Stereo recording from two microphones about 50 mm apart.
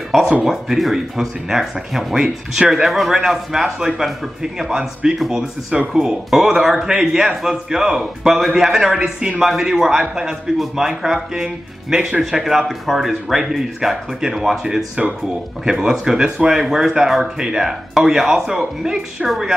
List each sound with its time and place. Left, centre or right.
0.4 s a man's voice: centre